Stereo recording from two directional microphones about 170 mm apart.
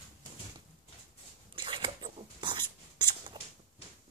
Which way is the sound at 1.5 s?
30° right (ahead or behind).